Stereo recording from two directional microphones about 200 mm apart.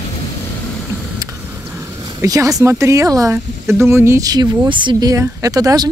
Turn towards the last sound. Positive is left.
turn(degrees=-20)  # may be behind; listen again after turning